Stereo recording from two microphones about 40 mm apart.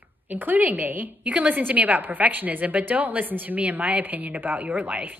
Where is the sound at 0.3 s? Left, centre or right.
Right.